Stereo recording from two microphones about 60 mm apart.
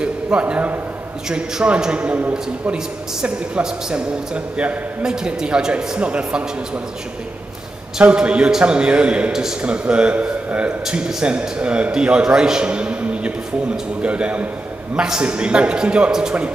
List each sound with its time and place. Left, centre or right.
0.0 s a man's voice: centre
8.0 s speech: centre
9.3 s a man's voice: centre